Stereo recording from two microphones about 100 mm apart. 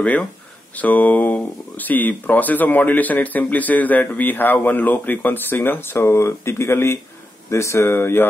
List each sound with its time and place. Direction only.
0.0 s speech: 15° left (ahead or behind)